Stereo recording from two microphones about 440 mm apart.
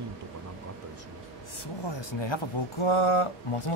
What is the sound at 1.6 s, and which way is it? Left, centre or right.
Speech, left.